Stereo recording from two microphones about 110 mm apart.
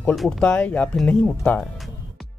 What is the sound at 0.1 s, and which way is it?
Speech, 5° left (ahead or behind).